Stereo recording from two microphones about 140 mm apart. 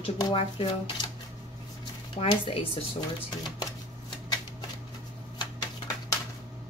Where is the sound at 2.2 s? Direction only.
40° left (ahead or behind).